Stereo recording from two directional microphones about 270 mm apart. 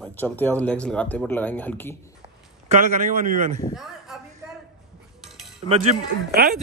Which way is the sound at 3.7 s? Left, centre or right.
Centre.